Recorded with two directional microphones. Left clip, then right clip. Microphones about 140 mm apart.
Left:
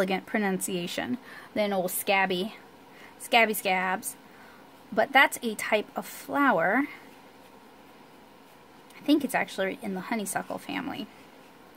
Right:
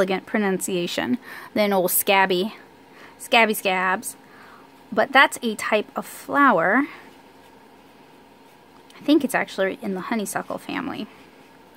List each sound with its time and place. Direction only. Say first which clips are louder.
0.0 s a woman's voice: right 5 dB; 25° right (ahead or behind)
9.0 s speech: right 6 dB; 25° right (ahead or behind)